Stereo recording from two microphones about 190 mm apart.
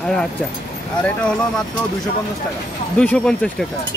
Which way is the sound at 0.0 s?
5° left (ahead or behind).